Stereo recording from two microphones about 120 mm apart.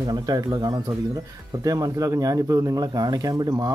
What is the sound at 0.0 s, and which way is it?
Speech, 30° right (ahead or behind).